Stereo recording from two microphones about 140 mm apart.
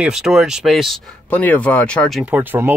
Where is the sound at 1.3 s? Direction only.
10° left (ahead or behind).